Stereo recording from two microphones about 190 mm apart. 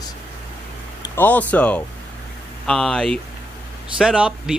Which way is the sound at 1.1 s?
10° left (ahead or behind).